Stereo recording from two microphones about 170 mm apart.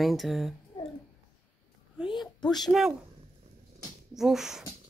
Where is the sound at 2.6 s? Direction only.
Centre (ahead or behind).